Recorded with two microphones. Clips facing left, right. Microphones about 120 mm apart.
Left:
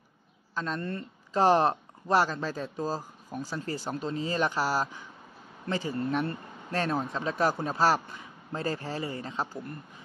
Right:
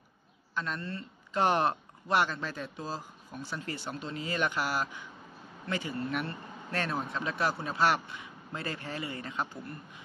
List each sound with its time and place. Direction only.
0.6 s speech: 35° left (ahead or behind)